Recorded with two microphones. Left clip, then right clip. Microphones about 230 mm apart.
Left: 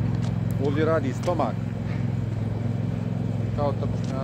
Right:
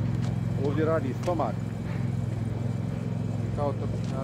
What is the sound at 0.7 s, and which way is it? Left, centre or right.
Vehicle, left.